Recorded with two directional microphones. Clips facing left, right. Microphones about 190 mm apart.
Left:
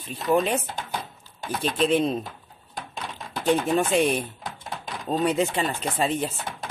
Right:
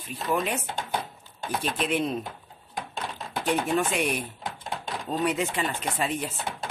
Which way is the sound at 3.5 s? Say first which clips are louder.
Left 4 dB; 30° left (ahead or behind).